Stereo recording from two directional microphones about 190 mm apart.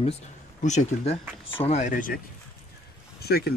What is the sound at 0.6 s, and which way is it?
Speech, 40° left (ahead or behind).